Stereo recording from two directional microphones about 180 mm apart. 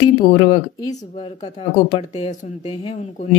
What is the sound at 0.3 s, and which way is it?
Speech, 45° left (ahead or behind).